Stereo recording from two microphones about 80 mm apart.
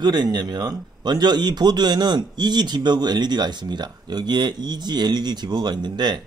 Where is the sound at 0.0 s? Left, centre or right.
Right.